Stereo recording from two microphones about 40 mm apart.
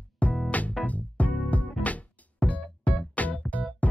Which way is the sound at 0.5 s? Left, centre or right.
Left.